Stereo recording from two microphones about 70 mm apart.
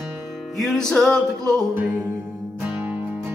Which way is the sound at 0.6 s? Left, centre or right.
Centre.